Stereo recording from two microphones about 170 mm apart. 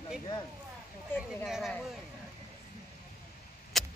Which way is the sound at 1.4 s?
Centre (ahead or behind).